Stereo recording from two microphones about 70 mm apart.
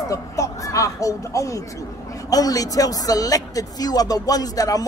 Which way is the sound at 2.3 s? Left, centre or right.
Left.